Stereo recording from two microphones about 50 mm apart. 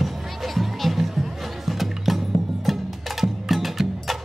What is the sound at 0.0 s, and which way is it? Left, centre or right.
Music, centre.